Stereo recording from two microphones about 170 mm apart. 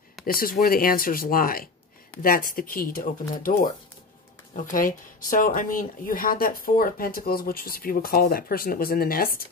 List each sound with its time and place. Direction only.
0.2 s speech: 60° left (ahead or behind)
4.6 s speech: 50° left (ahead or behind)